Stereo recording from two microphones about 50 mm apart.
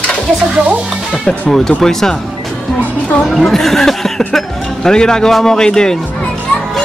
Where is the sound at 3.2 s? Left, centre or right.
Centre.